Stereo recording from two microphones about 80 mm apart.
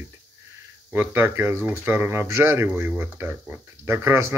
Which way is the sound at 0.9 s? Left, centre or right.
Right.